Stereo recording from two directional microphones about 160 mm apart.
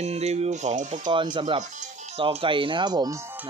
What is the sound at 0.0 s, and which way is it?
Speech, 40° right (ahead or behind).